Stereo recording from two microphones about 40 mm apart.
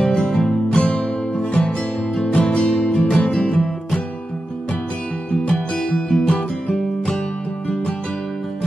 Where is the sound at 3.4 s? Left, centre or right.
Left.